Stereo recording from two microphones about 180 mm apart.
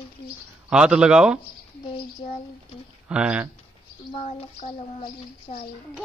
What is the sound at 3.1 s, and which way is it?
Speech, 5° right (ahead or behind).